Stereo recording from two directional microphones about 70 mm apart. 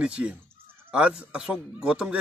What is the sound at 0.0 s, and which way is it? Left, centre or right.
Speech, centre.